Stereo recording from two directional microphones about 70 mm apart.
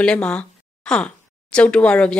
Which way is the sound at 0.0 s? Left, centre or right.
Centre.